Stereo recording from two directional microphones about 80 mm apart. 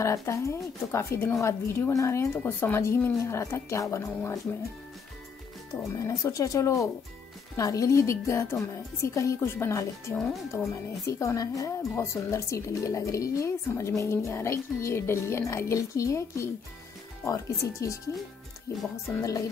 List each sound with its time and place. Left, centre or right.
0.0 s speech: left
2.4 s speech: left
2.8 s speech: left
5.9 s speech: left
10.1 s speech: centre
10.7 s speech: left
11.9 s speech: left